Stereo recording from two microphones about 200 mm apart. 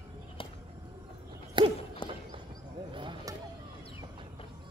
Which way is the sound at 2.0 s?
25° left (ahead or behind).